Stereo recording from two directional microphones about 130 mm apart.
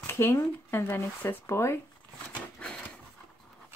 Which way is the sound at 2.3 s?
5° left (ahead or behind).